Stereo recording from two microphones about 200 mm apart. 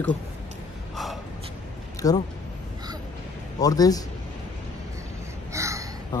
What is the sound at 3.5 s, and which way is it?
Speech, 20° left (ahead or behind).